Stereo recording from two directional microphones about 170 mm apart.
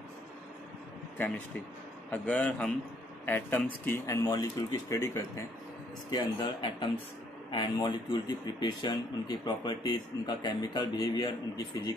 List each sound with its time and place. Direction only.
2.0 s speech: 10° left (ahead or behind)